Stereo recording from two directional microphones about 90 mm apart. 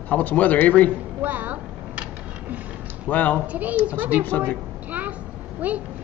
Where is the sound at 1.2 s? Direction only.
20° right (ahead or behind).